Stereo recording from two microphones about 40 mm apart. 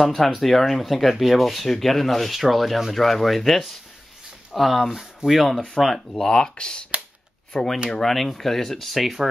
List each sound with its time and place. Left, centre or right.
0.0 s speech: centre
5.5 s speech: centre
6.5 s speech: left
7.5 s speech: centre